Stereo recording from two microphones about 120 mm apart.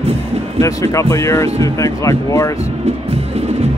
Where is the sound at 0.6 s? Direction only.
25° left (ahead or behind).